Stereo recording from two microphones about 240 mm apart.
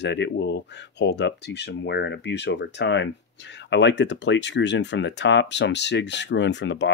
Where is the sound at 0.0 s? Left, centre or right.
Left.